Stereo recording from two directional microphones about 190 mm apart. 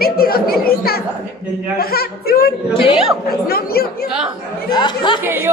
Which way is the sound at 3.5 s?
50° left (ahead or behind).